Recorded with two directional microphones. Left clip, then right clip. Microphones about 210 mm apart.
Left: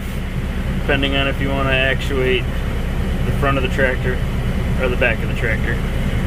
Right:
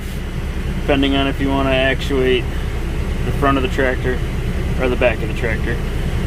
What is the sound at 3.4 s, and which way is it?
Speech, 25° right (ahead or behind).